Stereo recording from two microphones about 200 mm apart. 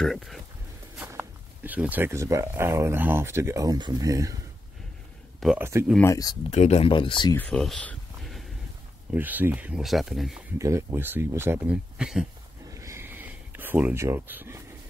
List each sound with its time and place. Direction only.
0.0 s speech: centre (ahead or behind); by 4.4 s 15° right (ahead or behind)
5.6 s speech: 15° right (ahead or behind)
6.0 s speech: 15° left (ahead or behind)
6.5 s speech: 30° left (ahead or behind)
7.3 s a sound: 5° left (ahead or behind)
9.1 s speech: 10° right (ahead or behind)
10.6 s speech: 15° right (ahead or behind)
12.7 s a sound: 15° right (ahead or behind)